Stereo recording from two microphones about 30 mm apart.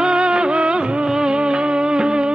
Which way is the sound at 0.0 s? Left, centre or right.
Right.